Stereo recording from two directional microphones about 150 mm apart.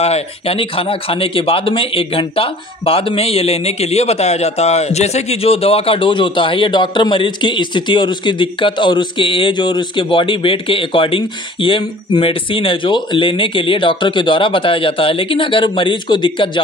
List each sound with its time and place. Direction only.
0.0 s a man's voice: 40° left (ahead or behind)